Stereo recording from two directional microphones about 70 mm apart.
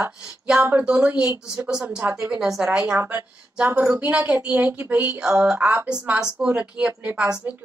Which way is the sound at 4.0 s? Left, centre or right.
Right.